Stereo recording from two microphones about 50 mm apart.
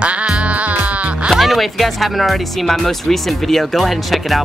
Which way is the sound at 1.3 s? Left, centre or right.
Centre.